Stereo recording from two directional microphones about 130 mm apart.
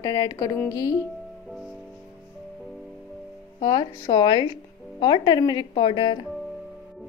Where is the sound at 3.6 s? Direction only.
30° left (ahead or behind).